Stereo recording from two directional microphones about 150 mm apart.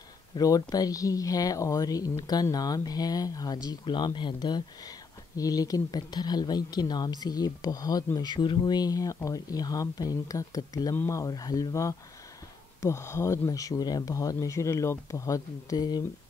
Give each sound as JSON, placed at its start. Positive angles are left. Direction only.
{"t": 0.4, "sound": "speech", "side_deg": 25}